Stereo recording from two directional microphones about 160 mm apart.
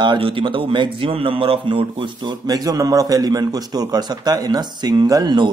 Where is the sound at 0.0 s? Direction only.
30° right (ahead or behind).